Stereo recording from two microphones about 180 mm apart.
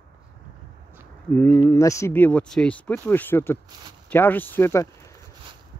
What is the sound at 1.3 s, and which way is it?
Speech, 10° left (ahead or behind).